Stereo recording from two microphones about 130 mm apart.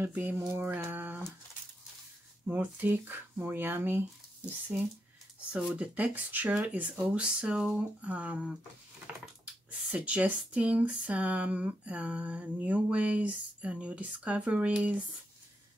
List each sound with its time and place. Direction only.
0.0 s speech: 15° right (ahead or behind)
2.4 s speech: 15° right (ahead or behind)
5.5 s speech: 10° right (ahead or behind)
9.9 s speech: 10° right (ahead or behind)